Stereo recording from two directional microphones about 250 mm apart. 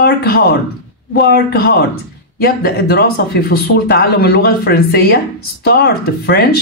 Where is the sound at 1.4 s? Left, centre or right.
Left.